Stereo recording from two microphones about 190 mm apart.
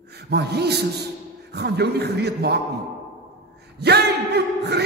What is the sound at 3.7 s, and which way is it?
A man's voice, 60° right (ahead or behind).